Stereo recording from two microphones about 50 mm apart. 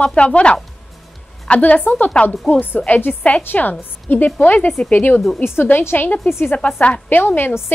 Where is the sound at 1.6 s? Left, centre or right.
Left.